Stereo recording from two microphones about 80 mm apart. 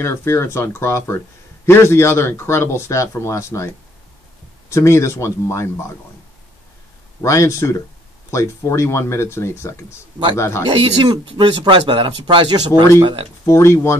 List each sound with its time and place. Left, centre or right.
0.0 s speech: left
7.2 s speech: left
11.0 s speech: right
13.5 s speech: left